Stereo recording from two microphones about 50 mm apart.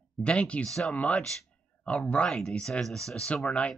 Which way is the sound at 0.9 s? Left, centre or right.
Left.